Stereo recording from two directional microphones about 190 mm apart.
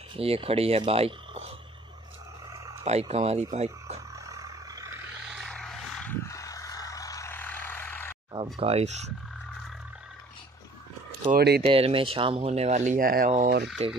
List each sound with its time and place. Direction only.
0.1 s speech: 30° right (ahead or behind)
2.8 s speech: 35° right (ahead or behind)
4.3 s a sound: 20° right (ahead or behind)
5.3 s vehicle: centre (ahead or behind)
6.2 s vehicle: 15° left (ahead or behind)
8.5 s speech: 30° right (ahead or behind)
11.3 s speech: 55° right (ahead or behind)
11.6 s speech: 30° right (ahead or behind)